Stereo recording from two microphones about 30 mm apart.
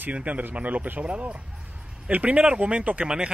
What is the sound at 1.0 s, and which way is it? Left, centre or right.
Speech, right.